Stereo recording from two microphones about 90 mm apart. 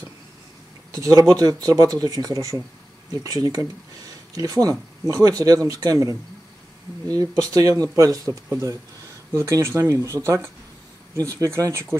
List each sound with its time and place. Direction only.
0.9 s speech: 35° right (ahead or behind)